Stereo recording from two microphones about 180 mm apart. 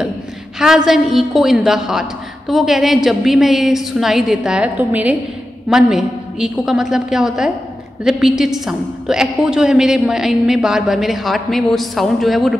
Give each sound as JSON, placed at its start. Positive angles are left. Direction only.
{"t": 0.6, "sound": "a woman's voice", "side_deg": -5}